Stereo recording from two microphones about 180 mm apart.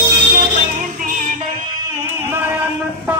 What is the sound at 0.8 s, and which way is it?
Music, 50° right (ahead or behind).